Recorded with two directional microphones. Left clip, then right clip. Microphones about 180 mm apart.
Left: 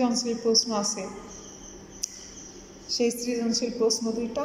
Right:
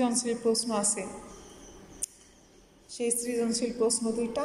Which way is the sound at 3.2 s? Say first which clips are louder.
Left 2 dB; centre (ahead or behind).